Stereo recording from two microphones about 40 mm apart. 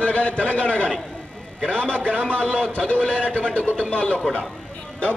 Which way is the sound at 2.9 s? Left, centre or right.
Left.